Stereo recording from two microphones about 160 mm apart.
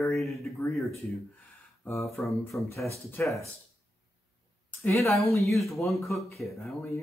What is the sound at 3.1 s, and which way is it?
Speech, 20° left (ahead or behind).